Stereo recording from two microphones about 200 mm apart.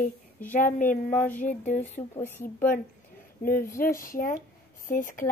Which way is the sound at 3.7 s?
45° left (ahead or behind).